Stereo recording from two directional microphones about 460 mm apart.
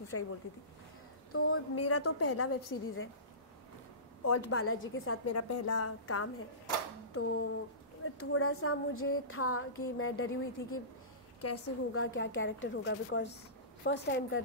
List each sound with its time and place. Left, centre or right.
0.1 s a woman's voice: left
1.3 s a woman's voice: left
4.2 s a woman's voice: left
8.0 s a woman's voice: left